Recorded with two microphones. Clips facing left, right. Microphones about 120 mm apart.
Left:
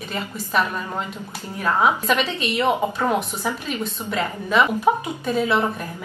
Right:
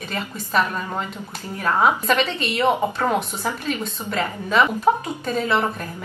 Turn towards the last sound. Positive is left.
turn(degrees=10)  # may be behind; listen again after turning